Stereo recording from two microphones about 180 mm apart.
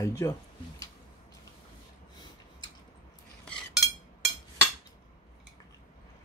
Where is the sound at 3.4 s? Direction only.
5° left (ahead or behind).